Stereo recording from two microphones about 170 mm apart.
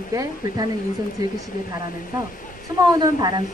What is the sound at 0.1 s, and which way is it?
Speech, 20° right (ahead or behind).